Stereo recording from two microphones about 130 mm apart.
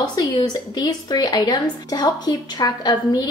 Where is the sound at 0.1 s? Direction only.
35° left (ahead or behind).